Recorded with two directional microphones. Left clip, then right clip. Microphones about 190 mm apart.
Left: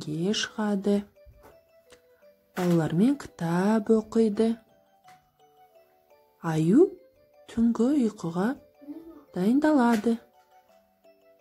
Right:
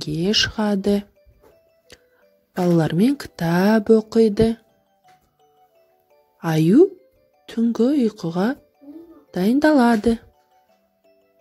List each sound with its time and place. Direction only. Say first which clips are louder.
0.0 s speech: right 9 dB; 25° right (ahead or behind)
1.9 s music: right 8 dB; 25° right (ahead or behind)
2.5 s speech: right 7 dB; 30° right (ahead or behind)
6.4 s speech: right 6 dB; 25° right (ahead or behind)